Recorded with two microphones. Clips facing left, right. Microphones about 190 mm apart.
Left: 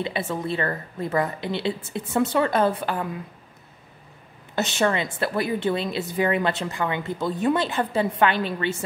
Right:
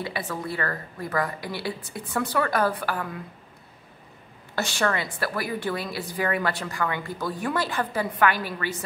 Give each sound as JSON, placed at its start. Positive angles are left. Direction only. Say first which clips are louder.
{"t": 0.0, "sound": "a woman's voice", "louder": "left 4 dB", "side_deg": 25}
{"t": 4.6, "sound": "a woman's voice", "louder": "left 3 dB", "side_deg": 20}